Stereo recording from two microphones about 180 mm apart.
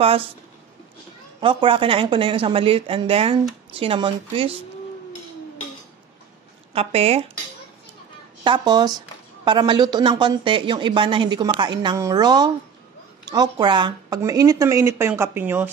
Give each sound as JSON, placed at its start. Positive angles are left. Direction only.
{"t": 1.4, "sound": "a woman's voice", "side_deg": -30}
{"t": 6.7, "sound": "speech", "side_deg": -35}
{"t": 8.5, "sound": "a woman's voice", "side_deg": -25}